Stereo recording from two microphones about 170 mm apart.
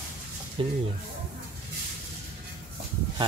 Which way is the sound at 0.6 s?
30° right (ahead or behind).